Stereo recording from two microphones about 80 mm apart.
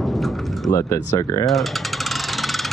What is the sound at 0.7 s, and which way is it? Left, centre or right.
Speech, left.